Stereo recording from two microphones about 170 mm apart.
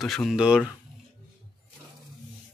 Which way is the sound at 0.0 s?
Centre (ahead or behind).